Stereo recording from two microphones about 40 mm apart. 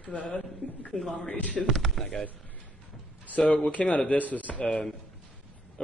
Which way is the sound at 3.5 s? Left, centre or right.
Left.